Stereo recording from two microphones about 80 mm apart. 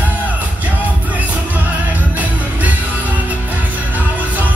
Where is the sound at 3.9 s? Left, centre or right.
Right.